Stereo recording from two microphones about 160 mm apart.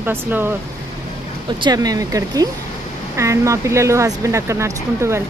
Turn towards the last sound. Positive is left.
turn(degrees=-15)  # may be behind; listen again after turning